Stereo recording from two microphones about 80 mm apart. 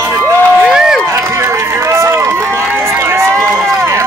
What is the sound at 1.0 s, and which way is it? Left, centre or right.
Run, right.